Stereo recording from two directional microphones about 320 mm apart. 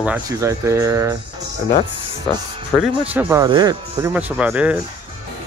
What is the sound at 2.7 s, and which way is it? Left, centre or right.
Speech, centre.